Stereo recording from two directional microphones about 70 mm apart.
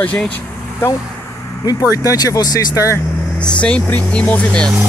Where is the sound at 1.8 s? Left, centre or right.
Left.